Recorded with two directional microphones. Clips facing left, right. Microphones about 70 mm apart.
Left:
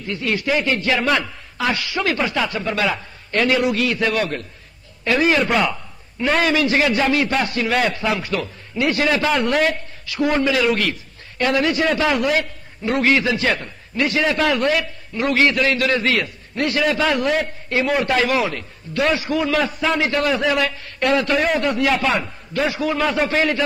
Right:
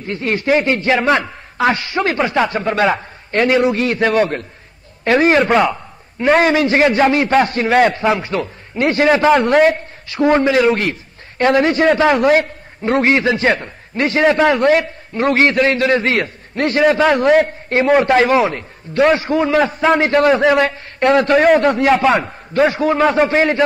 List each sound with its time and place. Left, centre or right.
0.0 s a man's voice: right